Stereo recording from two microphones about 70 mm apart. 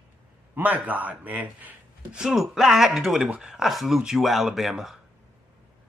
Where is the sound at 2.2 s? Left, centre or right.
Centre.